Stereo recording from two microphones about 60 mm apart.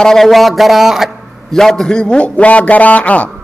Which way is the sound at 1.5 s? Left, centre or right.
Centre.